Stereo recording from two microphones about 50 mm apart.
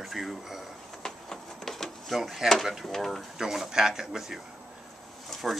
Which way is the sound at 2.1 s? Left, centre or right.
Centre.